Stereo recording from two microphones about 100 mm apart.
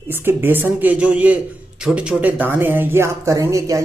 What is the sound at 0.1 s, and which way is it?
Speech, 20° right (ahead or behind).